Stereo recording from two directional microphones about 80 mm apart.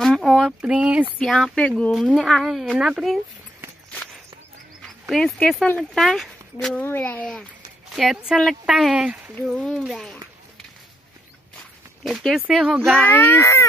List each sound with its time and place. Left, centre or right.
0.0 s a sound: centre
0.6 s a sound: centre
1.2 s speech: centre
2.2 s speech: centre
4.8 s speech: centre
6.8 s speech: left
7.9 s speech: centre
9.5 s speech: centre
12.0 s speech: centre
12.8 s speech: centre
13.1 s speech: left